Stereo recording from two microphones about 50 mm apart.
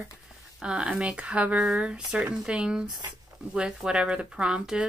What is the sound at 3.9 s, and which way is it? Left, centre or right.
Speech, centre.